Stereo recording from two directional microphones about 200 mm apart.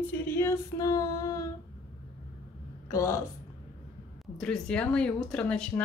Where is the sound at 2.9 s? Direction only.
15° left (ahead or behind).